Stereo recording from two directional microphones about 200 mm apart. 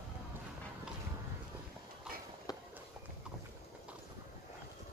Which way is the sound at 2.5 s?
20° left (ahead or behind).